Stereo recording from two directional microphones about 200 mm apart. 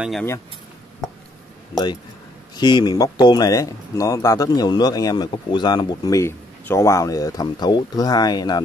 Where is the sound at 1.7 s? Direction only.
20° left (ahead or behind).